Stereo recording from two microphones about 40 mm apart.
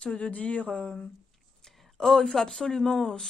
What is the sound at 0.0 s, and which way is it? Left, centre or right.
Speech, left.